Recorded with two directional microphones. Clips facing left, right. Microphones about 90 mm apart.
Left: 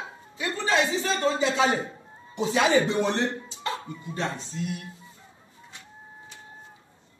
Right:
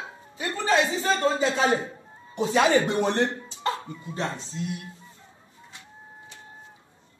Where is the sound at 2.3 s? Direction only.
45° right (ahead or behind).